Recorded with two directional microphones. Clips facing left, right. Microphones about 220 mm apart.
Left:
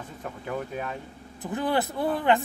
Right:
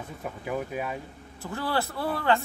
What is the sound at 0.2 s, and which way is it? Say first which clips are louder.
Speech: right 1 dB; 5° right (ahead or behind).